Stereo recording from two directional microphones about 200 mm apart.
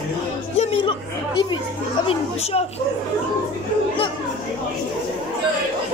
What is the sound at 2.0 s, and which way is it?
Speech, 30° left (ahead or behind).